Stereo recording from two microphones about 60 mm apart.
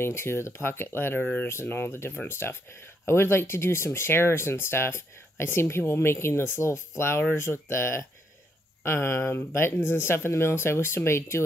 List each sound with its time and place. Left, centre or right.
0.0 s speech: left
1.2 s speech: left
1.5 s speech: left